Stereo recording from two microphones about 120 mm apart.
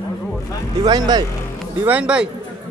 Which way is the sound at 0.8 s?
35° right (ahead or behind).